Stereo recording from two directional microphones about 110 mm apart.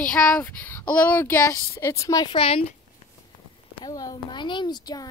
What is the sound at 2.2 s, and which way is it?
Speech, 60° left (ahead or behind).